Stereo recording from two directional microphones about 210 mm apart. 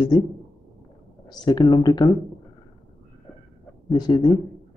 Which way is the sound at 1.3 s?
20° left (ahead or behind).